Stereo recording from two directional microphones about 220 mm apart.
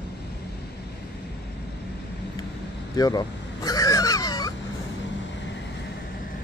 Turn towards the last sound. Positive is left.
turn(degrees=15)  # may be behind; listen again after turning